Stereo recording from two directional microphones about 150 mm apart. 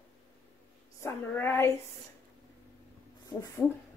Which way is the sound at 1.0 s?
15° left (ahead or behind).